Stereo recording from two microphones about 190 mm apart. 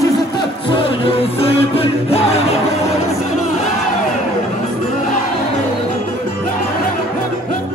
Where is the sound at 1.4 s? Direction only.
30° left (ahead or behind).